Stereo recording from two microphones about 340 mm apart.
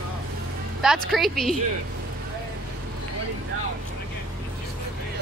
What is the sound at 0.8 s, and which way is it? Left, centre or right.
Speech, centre.